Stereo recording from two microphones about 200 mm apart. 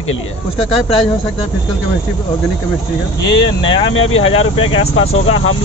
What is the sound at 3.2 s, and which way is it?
Speech, 20° left (ahead or behind).